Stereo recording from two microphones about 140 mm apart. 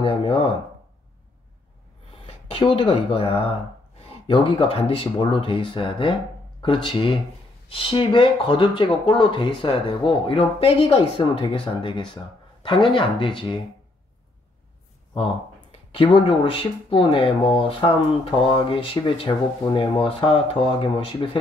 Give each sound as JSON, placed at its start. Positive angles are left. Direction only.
{"t": 0.0, "sound": "speech", "side_deg": 40}
{"t": 2.2, "sound": "speech", "side_deg": 40}
{"t": 15.7, "sound": "speech", "side_deg": 40}